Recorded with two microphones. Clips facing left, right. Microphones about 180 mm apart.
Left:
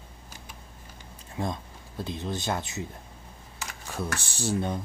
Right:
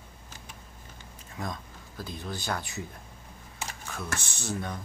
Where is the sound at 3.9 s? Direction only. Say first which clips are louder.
Left 5 dB; 35° left (ahead or behind).